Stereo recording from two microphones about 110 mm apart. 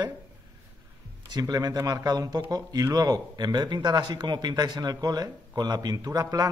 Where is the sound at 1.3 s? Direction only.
35° right (ahead or behind).